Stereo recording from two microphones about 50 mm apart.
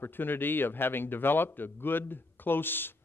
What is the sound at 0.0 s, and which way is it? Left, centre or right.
A man's voice, left.